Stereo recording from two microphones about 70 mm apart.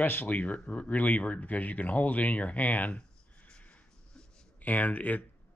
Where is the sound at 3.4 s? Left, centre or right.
Centre.